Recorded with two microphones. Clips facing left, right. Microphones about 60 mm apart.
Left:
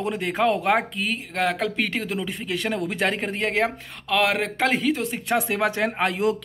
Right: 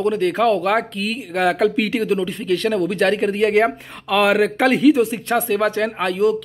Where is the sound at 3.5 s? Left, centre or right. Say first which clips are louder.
Right 7 dB; centre.